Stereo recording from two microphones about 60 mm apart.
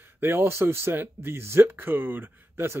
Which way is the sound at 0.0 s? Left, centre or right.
Right.